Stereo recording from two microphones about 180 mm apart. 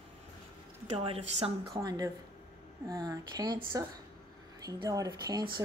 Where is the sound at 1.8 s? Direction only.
20° right (ahead or behind).